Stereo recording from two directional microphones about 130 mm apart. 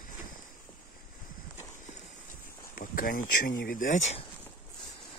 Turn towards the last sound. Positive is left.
turn(degrees=80)